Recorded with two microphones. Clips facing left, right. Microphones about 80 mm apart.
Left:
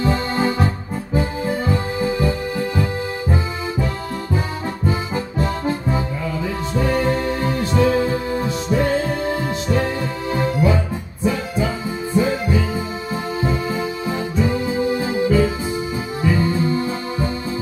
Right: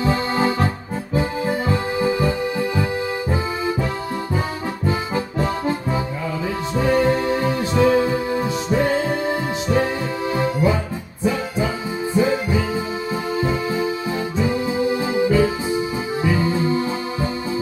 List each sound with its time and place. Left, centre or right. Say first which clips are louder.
0.0 s music: even; centre
4.8 s music: right 1 dB; centre
6.7 s music: right 2 dB; centre
12.2 s music: even; centre
14.3 s music: left 1 dB; centre